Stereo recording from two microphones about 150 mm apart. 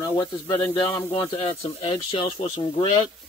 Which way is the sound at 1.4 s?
40° left (ahead or behind).